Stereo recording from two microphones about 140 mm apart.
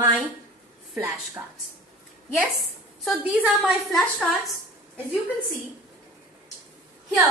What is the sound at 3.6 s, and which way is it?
Speech, centre (ahead or behind).